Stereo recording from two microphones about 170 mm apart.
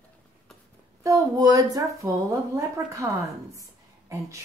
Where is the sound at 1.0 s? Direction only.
20° right (ahead or behind).